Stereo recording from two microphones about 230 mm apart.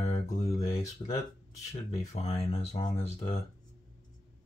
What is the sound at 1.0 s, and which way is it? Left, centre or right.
Speech, left.